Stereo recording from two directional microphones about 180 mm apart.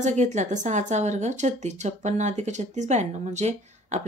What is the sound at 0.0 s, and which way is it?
Speech, 40° right (ahead or behind).